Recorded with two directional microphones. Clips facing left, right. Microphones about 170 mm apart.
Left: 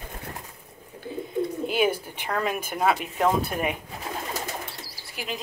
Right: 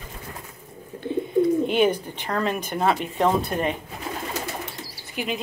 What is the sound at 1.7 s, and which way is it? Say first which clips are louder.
Speech: right 4 dB; 5° left (ahead or behind).